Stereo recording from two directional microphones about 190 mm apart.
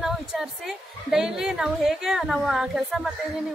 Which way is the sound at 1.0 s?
Centre (ahead or behind).